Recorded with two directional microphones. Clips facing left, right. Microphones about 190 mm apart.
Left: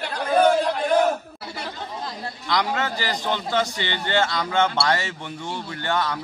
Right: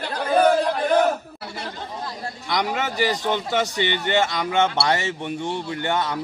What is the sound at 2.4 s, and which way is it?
A man's voice, 15° right (ahead or behind).